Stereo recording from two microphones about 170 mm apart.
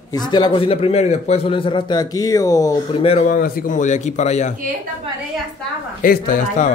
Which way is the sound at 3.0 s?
35° left (ahead or behind).